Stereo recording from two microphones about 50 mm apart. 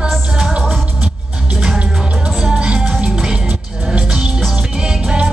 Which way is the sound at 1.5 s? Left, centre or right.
Centre.